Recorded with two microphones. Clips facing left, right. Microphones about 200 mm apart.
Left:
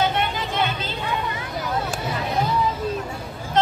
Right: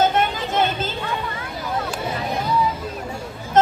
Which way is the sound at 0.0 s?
45° right (ahead or behind).